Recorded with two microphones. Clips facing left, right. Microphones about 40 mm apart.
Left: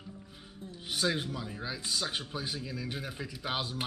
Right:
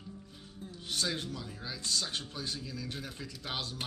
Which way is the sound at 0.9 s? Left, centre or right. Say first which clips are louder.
Left 4 dB; centre.